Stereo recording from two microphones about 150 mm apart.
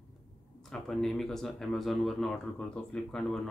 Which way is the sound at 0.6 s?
5° left (ahead or behind).